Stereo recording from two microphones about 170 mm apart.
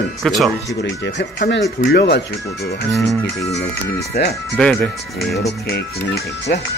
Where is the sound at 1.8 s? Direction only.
85° left.